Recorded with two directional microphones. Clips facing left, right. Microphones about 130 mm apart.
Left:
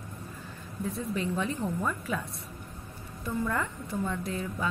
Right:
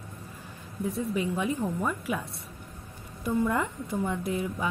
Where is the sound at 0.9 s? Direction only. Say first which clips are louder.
Right 3 dB; 15° right (ahead or behind).